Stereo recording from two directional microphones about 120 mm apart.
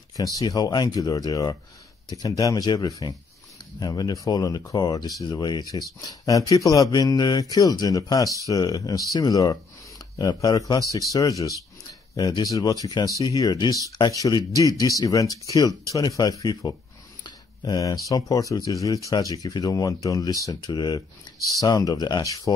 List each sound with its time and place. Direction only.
0.1 s speech: 30° left (ahead or behind)